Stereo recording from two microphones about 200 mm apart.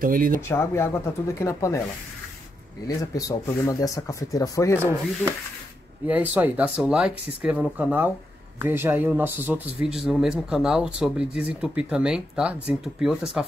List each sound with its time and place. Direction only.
0.0 s speech: 45° right (ahead or behind)
0.5 s speech: 10° left (ahead or behind)
2.9 s speech: 15° left (ahead or behind)
6.0 s speech: 10° right (ahead or behind)